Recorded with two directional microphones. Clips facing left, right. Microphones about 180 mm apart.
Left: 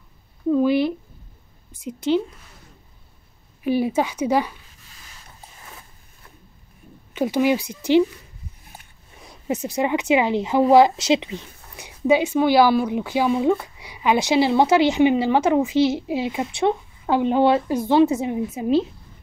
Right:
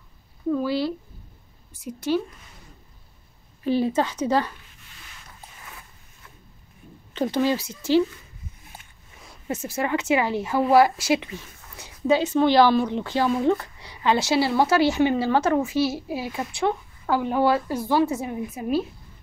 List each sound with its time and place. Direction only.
0.5 s a sound: 20° left (ahead or behind)
1.9 s speech: 20° left (ahead or behind)
3.6 s speech: 10° left (ahead or behind)
7.2 s speech: 10° left (ahead or behind)
9.2 s speech: 15° left (ahead or behind)